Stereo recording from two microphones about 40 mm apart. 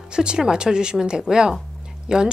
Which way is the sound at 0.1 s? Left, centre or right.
Right.